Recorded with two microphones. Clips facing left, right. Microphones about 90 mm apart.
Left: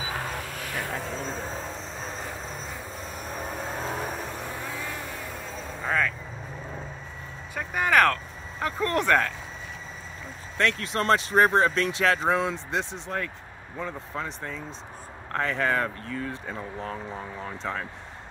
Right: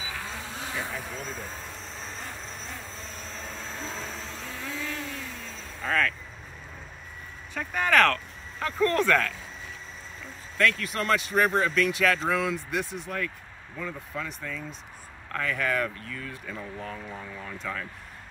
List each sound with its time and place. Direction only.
0.4 s vehicle: 25° right (ahead or behind)
1.2 s vehicle: 35° left (ahead or behind)
3.0 s vehicle: 15° left (ahead or behind)
3.4 s a sound: 60° left (ahead or behind)
4.2 s vehicle: 15° left (ahead or behind)
7.5 s vehicle: 10° left (ahead or behind)
10.6 s speech: 25° left (ahead or behind)